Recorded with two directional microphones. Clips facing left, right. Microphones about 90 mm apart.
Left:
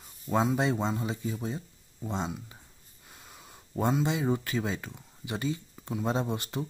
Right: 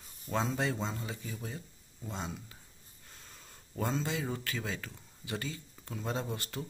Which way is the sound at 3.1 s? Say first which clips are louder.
Left 5 dB; 10° left (ahead or behind).